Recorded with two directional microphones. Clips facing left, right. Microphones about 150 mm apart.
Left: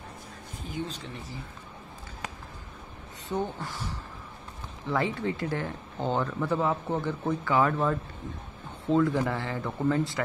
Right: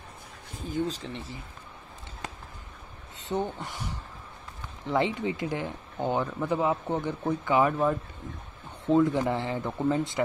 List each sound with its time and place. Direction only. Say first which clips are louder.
0.7 s speech: right 5 dB; 40° right (ahead or behind)
3.3 s speech: right 1 dB; 20° right (ahead or behind)